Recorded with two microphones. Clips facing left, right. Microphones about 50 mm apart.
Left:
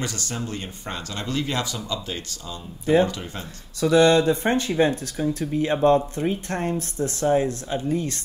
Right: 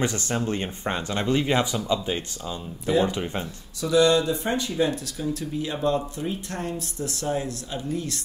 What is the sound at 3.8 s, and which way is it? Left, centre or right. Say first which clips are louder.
Speech: left 3 dB; left.